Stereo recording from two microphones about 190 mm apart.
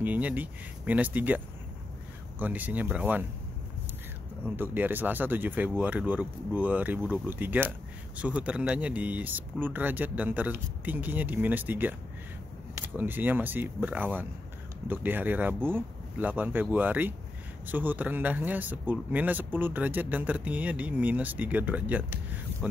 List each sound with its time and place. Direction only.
0.0 s speech: 10° right (ahead or behind)
4.6 s speech: 10° right (ahead or behind)
12.9 s speech: 10° right (ahead or behind)